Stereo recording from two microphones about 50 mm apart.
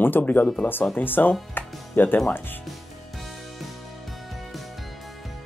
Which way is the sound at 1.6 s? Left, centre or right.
Left.